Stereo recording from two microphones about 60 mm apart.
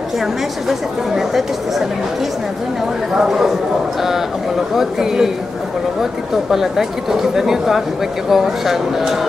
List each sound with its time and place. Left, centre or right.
0.7 s speech: centre
3.2 s speech: centre
6.5 s speech: centre